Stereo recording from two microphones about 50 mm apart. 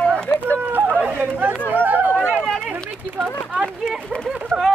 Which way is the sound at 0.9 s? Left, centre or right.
Right.